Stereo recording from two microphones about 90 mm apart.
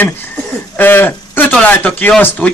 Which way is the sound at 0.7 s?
20° left (ahead or behind).